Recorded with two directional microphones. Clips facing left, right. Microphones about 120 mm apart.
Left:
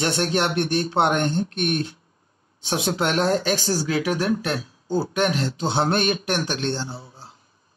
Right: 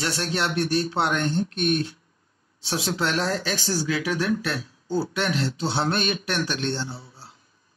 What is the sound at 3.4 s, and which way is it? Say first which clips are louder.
Speech: left 4 dB; 45° left (ahead or behind).